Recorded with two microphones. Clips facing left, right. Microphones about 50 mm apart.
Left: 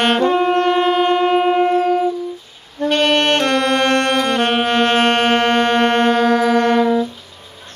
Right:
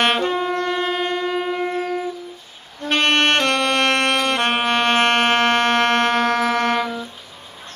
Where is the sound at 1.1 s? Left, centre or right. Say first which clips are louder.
Left 8 dB; left.